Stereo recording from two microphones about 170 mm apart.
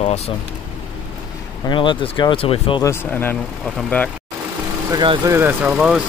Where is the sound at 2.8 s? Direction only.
15° left (ahead or behind).